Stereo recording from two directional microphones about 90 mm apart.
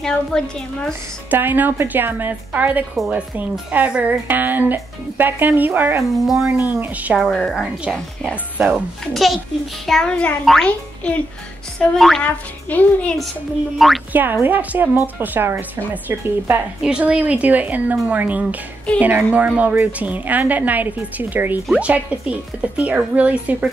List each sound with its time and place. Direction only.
0.0 s a woman's voice: 5° left (ahead or behind)
1.3 s a woman's voice: 20° right (ahead or behind)
6.0 s a woman's voice: centre (ahead or behind)
6.5 s speech: 20° right (ahead or behind)
7.2 s a woman's voice: 5° left (ahead or behind)
8.3 s speech: 15° right (ahead or behind)
9.1 s a woman's voice: centre (ahead or behind)
11.8 s a woman's voice: 5° left (ahead or behind)
12.2 s a woman's voice: 15° left (ahead or behind)
13.7 s a woman's voice: centre (ahead or behind)
14.1 s a woman's voice: 20° right (ahead or behind)